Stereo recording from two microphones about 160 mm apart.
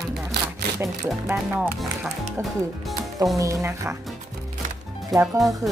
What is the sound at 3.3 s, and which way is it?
Speech, 20° right (ahead or behind).